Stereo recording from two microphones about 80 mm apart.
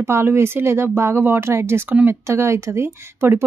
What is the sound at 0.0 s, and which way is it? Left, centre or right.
Speech, right.